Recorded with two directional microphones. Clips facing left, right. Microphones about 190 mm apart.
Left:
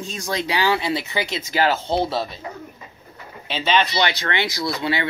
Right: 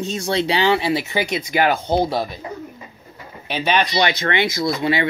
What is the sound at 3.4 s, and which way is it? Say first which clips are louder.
Speech: right 1 dB; 15° right (ahead or behind).